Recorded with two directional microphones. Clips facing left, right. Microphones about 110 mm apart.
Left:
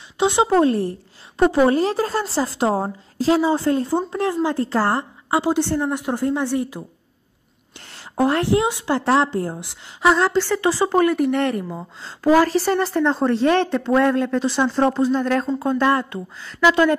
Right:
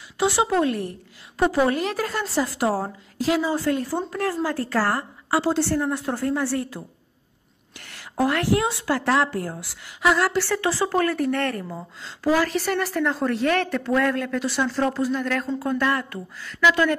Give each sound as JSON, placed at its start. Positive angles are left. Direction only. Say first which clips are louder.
{"t": 0.2, "sound": "a woman's voice", "louder": "left 4 dB", "side_deg": 20}
{"t": 7.8, "sound": "a woman's voice", "louder": "left 3 dB", "side_deg": 30}
{"t": 12.0, "sound": "speech", "louder": "left 6 dB", "side_deg": 40}
{"t": 12.4, "sound": "a woman's voice", "louder": "left 5 dB", "side_deg": 30}